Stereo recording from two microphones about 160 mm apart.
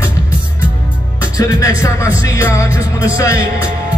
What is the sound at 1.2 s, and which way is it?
A man's voice, 20° left (ahead or behind).